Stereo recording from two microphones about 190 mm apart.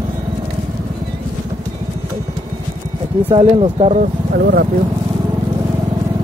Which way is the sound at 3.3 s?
30° right (ahead or behind).